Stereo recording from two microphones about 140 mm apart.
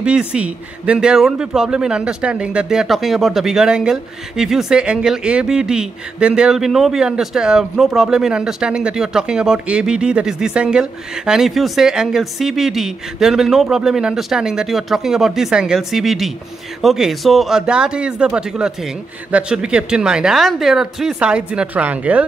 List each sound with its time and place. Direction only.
0.0 s a man's voice: 5° right (ahead or behind)